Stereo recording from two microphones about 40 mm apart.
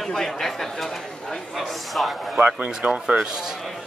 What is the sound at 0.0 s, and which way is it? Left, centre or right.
A man's voice, centre.